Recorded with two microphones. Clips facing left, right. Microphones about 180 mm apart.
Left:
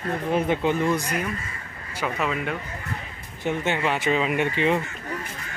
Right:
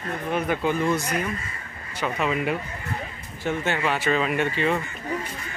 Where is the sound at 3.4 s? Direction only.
20° left (ahead or behind).